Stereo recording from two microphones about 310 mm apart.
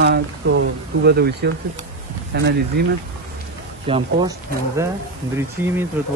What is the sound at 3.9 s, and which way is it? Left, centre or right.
Speech, centre.